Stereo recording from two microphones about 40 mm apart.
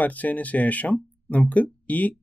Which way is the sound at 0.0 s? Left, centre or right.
Left.